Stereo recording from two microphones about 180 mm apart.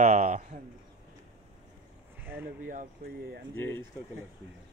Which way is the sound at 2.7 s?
50° right (ahead or behind).